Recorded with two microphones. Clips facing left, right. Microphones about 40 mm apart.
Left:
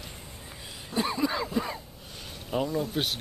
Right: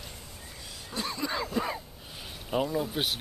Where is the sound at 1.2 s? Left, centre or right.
Centre.